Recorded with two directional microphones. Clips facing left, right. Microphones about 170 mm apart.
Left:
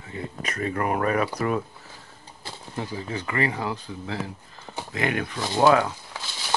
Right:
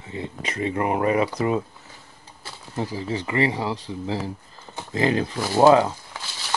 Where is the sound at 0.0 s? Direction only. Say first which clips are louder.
Right 2 dB; 25° right (ahead or behind).